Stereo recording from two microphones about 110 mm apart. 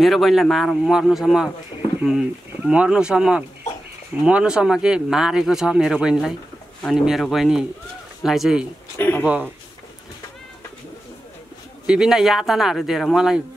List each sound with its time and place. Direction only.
0.0 s speech: centre (ahead or behind)
8.9 s a sound: 15° left (ahead or behind)
9.2 s speech: 15° right (ahead or behind)
11.8 s speech: 5° right (ahead or behind)